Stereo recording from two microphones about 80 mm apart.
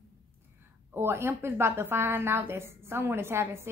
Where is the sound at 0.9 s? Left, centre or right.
Right.